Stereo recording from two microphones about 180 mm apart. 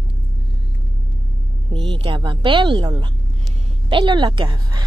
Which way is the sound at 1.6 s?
30° right (ahead or behind).